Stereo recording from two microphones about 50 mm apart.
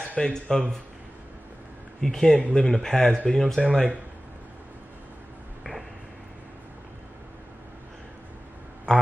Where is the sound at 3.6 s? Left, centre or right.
Centre.